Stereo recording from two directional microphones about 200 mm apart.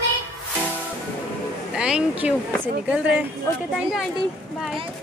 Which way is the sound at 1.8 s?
5° right (ahead or behind).